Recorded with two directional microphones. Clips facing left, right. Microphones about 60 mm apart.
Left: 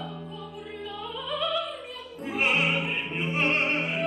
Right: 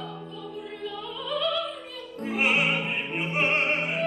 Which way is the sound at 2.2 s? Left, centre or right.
Centre.